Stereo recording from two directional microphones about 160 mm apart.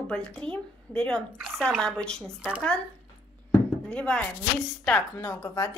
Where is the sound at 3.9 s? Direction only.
5° left (ahead or behind).